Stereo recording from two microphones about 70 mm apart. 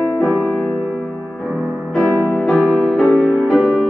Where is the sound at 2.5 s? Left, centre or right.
Centre.